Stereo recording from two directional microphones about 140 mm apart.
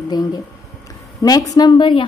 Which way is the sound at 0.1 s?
30° left (ahead or behind).